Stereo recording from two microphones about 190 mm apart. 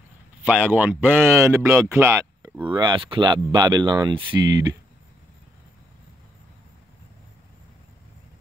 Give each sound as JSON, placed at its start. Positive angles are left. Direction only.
{"t": 0.5, "sound": "speech", "side_deg": -10}
{"t": 2.0, "sound": "a sound", "side_deg": -15}
{"t": 2.6, "sound": "speech", "side_deg": -25}